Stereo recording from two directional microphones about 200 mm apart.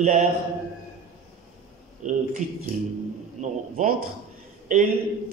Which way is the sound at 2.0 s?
40° right (ahead or behind).